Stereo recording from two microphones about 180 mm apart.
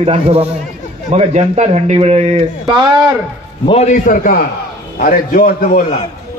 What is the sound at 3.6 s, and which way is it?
A man's voice, 35° left (ahead or behind).